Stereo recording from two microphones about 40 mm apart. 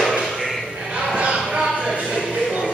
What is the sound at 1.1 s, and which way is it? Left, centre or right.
Basketball bounce, right.